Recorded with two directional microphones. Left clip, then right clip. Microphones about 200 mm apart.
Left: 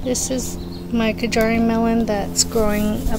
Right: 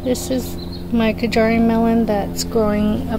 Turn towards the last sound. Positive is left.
turn(degrees=-5)  # may be behind; listen again after turning